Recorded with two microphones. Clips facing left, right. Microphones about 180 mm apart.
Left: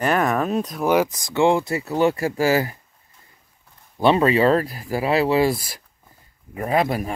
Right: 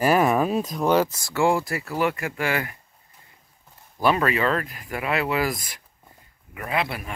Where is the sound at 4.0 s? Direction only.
25° left (ahead or behind).